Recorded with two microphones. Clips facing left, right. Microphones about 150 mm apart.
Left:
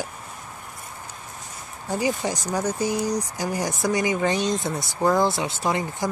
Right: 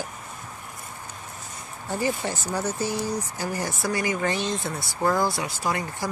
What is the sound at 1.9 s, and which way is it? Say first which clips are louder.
Speech: left 2 dB; 15° left (ahead or behind).